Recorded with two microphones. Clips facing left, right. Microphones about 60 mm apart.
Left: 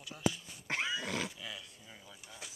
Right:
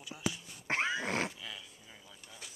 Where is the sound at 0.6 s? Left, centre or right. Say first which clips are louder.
Right 3 dB; right.